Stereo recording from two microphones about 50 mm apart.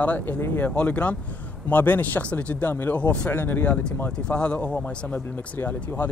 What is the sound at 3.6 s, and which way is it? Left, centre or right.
Speech, left.